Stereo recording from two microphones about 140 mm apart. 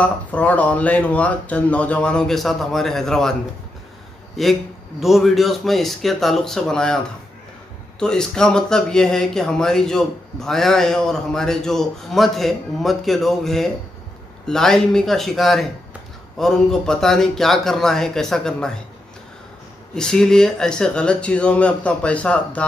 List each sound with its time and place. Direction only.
0.0 s speech: 10° left (ahead or behind)
4.4 s speech: centre (ahead or behind)
8.0 s speech: 5° left (ahead or behind)
19.9 s speech: 5° left (ahead or behind)